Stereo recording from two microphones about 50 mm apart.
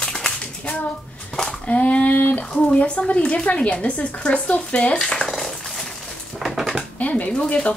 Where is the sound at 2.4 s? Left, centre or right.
Centre.